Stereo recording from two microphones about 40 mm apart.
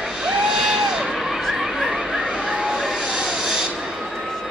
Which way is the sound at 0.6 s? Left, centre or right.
Centre.